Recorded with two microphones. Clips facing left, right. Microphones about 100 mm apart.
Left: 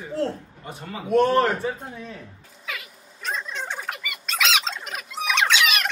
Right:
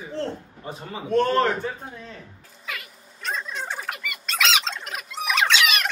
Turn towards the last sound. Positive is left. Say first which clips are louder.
# even
turn(degrees=0)  # may be behind; listen again after turning